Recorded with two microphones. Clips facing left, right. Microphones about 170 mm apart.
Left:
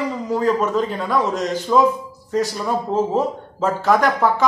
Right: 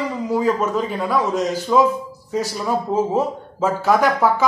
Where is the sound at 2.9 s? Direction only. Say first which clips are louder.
Left 2 dB; 5° right (ahead or behind).